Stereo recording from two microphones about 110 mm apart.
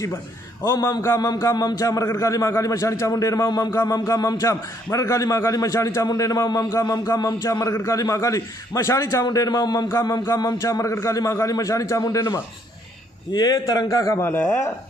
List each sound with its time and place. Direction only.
0.7 s a man's voice: 25° left (ahead or behind)
3.7 s a man's voice: 30° left (ahead or behind)